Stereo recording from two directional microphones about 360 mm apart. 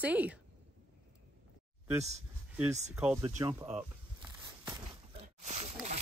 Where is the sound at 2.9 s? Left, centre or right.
Centre.